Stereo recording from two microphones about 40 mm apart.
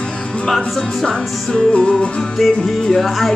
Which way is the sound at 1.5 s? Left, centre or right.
Left.